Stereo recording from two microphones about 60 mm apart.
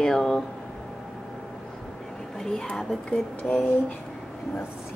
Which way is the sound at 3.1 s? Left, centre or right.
Centre.